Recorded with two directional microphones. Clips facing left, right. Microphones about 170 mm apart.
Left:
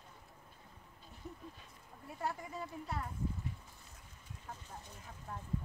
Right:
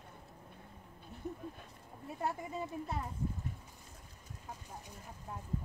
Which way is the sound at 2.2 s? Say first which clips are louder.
Right 3 dB; 20° right (ahead or behind).